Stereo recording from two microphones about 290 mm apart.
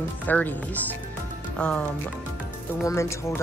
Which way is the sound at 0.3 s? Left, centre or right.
Centre.